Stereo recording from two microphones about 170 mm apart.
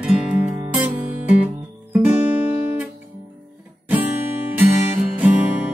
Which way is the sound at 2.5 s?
35° left (ahead or behind).